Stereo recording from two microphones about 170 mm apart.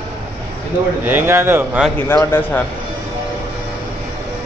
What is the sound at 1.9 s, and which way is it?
Speech, 15° left (ahead or behind).